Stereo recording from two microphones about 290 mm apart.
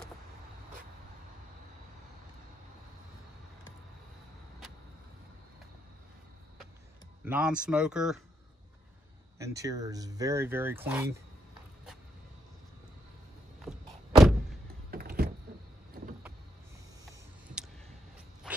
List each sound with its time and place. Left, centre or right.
7.2 s speech: centre
9.4 s speech: centre
13.7 s thunk: centre
14.9 s power windows: right